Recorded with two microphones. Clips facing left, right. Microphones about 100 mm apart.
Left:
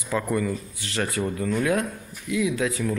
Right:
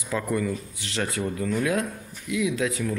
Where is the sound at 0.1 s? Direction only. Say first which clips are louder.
Left 1 dB; centre (ahead or behind).